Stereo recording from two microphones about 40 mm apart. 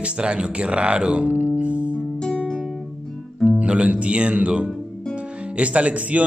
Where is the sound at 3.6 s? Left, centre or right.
Right.